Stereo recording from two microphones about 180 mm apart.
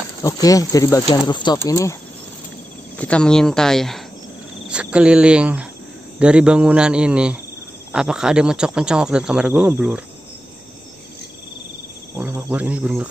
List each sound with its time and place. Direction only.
0.2 s speech: 20° left (ahead or behind)
3.0 s speech: 5° left (ahead or behind)
4.6 s cricket: 5° right (ahead or behind)
6.1 s speech: 5° right (ahead or behind)
12.2 s speech: 10° right (ahead or behind)